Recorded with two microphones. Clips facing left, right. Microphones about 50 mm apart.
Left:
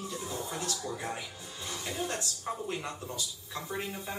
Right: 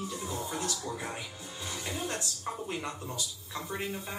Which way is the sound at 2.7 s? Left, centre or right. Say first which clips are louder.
Even; right.